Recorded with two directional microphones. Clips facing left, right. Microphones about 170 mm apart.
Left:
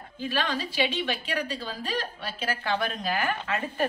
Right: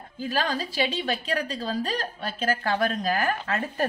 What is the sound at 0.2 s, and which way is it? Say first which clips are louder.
A woman's voice: right 2 dB; 40° right (ahead or behind).